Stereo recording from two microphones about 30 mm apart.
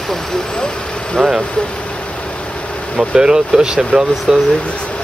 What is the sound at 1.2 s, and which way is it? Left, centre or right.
Speech, centre.